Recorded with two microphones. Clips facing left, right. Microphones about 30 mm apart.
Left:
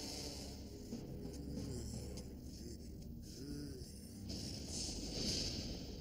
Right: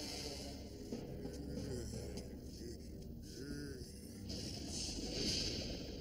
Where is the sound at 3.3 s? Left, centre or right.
Right.